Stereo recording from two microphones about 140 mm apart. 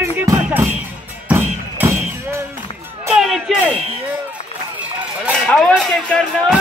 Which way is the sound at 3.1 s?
5° right (ahead or behind).